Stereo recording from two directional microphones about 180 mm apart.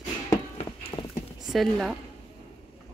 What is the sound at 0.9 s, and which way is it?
Clip-clop, 25° left (ahead or behind).